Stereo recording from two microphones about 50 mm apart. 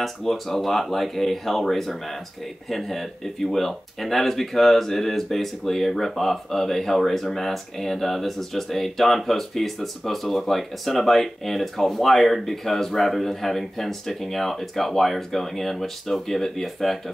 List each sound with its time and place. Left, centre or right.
0.0 s speech: centre